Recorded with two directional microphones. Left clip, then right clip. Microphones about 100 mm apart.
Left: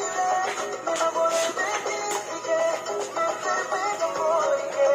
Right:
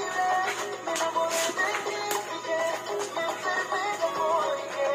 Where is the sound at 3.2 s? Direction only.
50° left (ahead or behind).